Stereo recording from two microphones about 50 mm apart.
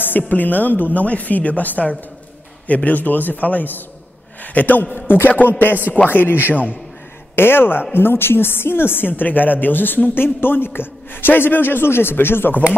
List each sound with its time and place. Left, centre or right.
0.3 s a woman's voice: left
7.3 s a woman's voice: left